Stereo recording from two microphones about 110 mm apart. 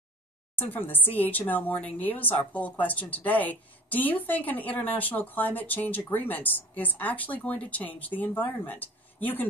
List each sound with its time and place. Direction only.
0.7 s a woman's voice: 15° left (ahead or behind)